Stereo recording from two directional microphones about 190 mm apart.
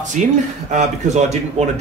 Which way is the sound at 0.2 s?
40° right (ahead or behind).